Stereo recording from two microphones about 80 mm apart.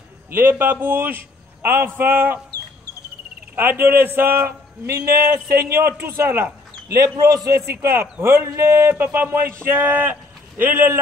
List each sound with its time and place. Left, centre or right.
0.3 s a man's voice: right
3.5 s a man's voice: right
6.9 s a man's voice: right
7.7 s a man's voice: right